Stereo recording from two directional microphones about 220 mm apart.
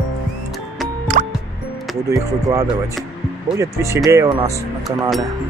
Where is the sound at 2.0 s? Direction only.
15° right (ahead or behind).